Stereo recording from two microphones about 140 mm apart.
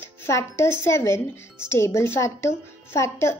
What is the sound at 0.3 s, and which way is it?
A woman's voice, 20° left (ahead or behind).